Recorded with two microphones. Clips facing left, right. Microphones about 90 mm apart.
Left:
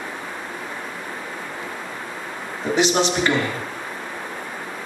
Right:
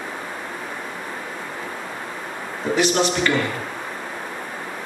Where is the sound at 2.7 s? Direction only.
20° left (ahead or behind).